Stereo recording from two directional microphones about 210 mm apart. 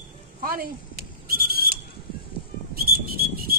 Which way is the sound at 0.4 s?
45° right (ahead or behind).